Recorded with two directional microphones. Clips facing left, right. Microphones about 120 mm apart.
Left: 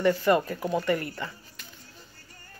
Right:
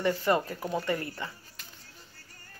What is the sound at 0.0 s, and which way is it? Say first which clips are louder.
Speech: left 4 dB; 25° right (ahead or behind).